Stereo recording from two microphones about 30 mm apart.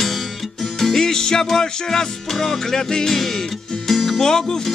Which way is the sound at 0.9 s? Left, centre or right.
Left.